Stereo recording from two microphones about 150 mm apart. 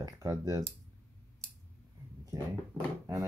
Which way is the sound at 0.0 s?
25° right (ahead or behind).